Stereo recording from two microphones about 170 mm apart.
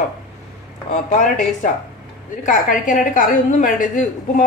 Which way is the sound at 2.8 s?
50° left (ahead or behind).